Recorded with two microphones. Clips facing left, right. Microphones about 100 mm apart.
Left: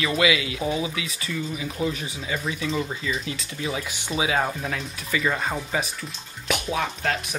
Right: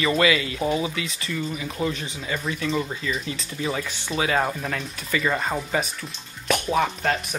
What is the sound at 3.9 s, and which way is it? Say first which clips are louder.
Speech: right 1 dB; 15° left (ahead or behind).